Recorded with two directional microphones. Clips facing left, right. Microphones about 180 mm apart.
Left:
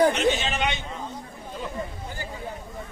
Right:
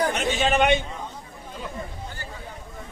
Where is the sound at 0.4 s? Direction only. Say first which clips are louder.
Right 8 dB; 50° right (ahead or behind).